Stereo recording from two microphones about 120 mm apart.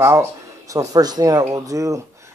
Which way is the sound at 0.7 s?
35° right (ahead or behind).